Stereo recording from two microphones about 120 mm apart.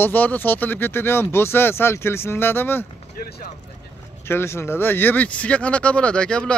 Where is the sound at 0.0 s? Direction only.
15° left (ahead or behind).